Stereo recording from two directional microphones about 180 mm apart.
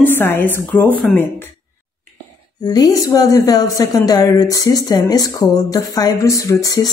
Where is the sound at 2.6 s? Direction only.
20° left (ahead or behind).